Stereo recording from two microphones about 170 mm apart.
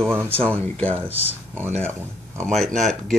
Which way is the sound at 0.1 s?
15° right (ahead or behind).